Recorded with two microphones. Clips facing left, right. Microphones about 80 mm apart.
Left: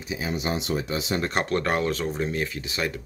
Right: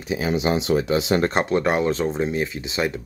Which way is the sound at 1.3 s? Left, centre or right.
Centre.